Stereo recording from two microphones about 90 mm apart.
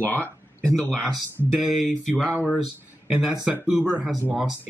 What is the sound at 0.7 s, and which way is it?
Speech, 5° left (ahead or behind).